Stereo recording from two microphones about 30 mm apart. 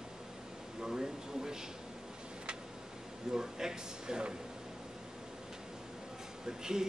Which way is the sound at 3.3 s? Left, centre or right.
Centre.